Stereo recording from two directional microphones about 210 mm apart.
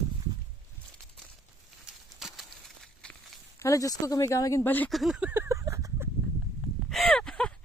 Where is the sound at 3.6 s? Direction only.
15° left (ahead or behind); by 6.1 s 15° right (ahead or behind).